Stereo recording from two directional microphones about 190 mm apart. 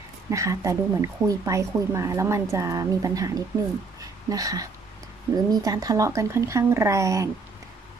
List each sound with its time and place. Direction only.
0.3 s a woman's voice: 15° right (ahead or behind)